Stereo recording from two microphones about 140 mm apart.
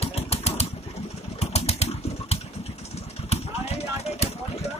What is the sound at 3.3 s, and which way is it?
Clip-clop, 50° left (ahead or behind).